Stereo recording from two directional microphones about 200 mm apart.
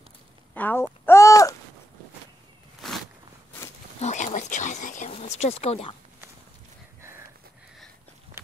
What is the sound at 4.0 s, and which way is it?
Speech, 35° left (ahead or behind).